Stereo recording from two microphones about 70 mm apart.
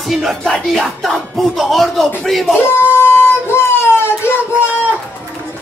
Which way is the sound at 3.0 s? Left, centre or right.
Left.